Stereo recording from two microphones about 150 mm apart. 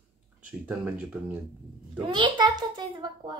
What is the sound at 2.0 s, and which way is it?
A child's voice, 30° right (ahead or behind).